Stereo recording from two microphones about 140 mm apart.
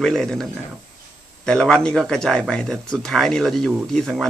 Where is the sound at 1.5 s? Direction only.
5° left (ahead or behind).